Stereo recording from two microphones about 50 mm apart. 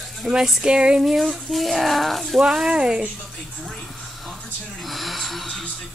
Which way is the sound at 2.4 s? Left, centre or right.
Centre.